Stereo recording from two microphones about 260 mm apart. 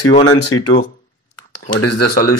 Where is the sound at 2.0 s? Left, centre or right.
Left.